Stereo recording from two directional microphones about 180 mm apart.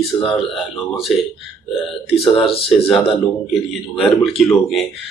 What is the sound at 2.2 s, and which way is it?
Speech, 30° left (ahead or behind).